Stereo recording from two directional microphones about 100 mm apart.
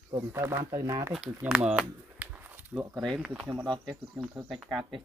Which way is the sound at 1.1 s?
10° right (ahead or behind).